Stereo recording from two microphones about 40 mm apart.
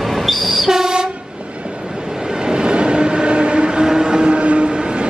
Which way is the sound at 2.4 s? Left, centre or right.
Right.